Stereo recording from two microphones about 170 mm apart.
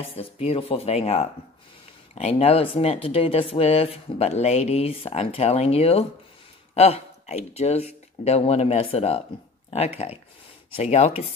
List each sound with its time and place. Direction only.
0.0 s speech: 35° left (ahead or behind)